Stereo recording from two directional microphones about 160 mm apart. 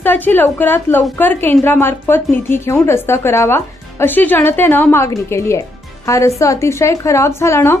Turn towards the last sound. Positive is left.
turn(degrees=15)  # may be behind; listen again after turning